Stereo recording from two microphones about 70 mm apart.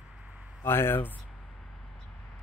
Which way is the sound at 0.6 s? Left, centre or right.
Left.